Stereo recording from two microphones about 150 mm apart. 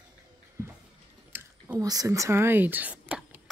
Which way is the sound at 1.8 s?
25° right (ahead or behind).